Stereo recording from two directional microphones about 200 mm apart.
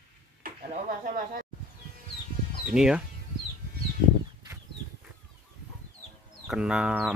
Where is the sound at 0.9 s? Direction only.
45° right (ahead or behind).